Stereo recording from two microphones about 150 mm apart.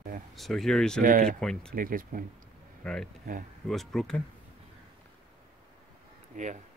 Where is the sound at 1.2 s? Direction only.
5° left (ahead or behind).